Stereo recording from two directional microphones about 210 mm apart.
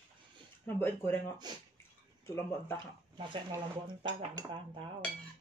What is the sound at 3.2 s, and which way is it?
Speech, 25° right (ahead or behind).